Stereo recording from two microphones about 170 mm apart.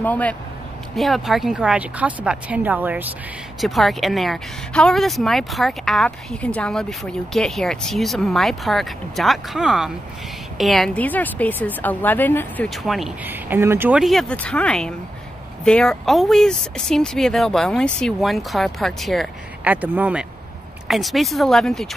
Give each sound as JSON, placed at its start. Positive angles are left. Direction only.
{"t": 0.0, "sound": "a woman's voice", "side_deg": 10}
{"t": 3.6, "sound": "a woman's voice", "side_deg": 0}
{"t": 12.6, "sound": "speech", "side_deg": 0}